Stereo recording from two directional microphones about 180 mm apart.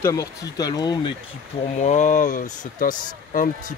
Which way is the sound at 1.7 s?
40° left (ahead or behind).